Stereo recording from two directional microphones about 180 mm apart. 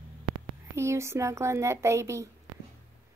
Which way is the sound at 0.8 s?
15° right (ahead or behind).